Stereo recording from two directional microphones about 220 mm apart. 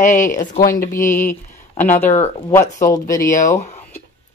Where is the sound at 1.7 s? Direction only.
35° left (ahead or behind).